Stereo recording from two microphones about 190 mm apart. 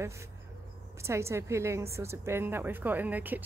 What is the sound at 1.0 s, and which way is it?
A woman's voice, 15° right (ahead or behind).